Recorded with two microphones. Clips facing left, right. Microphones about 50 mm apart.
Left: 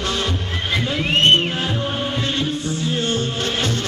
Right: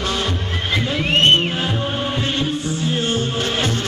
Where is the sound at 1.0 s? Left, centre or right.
Centre.